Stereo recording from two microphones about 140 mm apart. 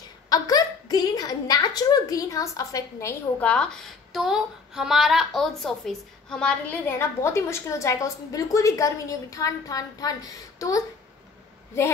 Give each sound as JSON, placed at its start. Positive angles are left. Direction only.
{"t": 0.3, "sound": "a woman's voice", "side_deg": 25}
{"t": 3.4, "sound": "speech", "side_deg": 5}
{"t": 4.1, "sound": "a woman's voice", "side_deg": -5}
{"t": 6.9, "sound": "a woman's voice", "side_deg": 20}